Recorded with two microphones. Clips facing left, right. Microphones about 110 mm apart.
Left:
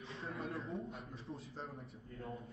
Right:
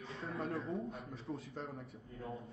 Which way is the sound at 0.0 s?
Centre (ahead or behind).